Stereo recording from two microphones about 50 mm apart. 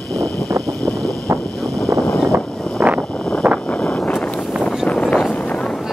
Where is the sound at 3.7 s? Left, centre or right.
Left.